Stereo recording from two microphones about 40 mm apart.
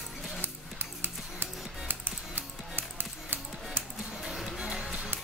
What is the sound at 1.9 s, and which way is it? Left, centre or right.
Music, right.